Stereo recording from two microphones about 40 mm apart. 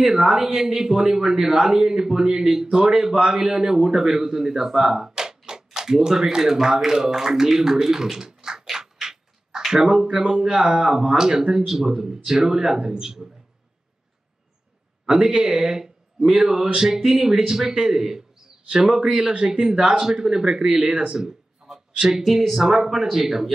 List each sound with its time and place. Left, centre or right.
0.0 s speech: centre
8.6 s a sound: centre
10.0 s speech: right
10.3 s speech: right
15.0 s speech: right
21.2 s a sound: centre
22.2 s speech: centre